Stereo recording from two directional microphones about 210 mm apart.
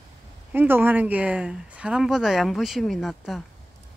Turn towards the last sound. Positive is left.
turn(degrees=0)  # may be behind; listen again after turning